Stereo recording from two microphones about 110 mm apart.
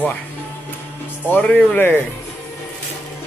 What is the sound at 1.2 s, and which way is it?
Speech, 15° left (ahead or behind).